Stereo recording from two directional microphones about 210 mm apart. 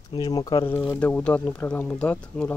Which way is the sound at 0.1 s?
20° left (ahead or behind).